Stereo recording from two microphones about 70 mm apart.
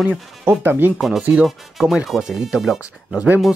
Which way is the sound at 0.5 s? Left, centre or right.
Right.